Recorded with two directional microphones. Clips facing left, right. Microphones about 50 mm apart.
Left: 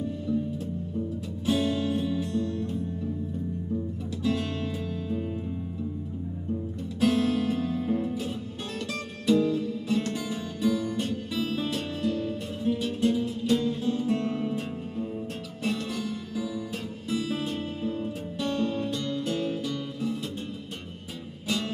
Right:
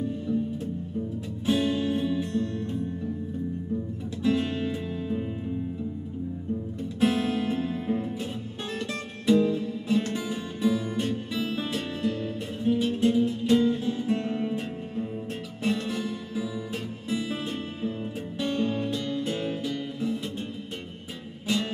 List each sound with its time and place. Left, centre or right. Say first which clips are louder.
1.4 s music: right 1 dB; right
4.2 s music: right 3 dB; right
7.0 s music: left 1 dB; right
17.1 s music: left 1 dB; right